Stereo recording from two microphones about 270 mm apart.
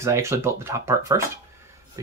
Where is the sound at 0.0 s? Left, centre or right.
Centre.